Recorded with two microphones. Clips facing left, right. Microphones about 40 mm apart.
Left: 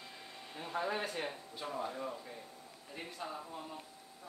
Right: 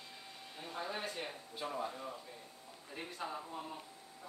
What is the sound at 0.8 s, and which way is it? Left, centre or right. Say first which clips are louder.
Speech: left 3 dB; left.